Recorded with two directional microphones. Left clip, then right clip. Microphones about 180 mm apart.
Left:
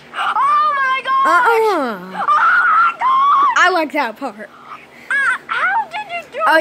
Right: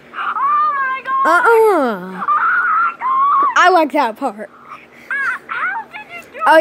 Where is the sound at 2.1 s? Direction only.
35° left (ahead or behind).